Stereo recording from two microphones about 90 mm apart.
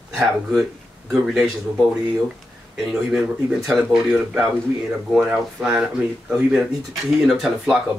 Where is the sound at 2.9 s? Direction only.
5° right (ahead or behind).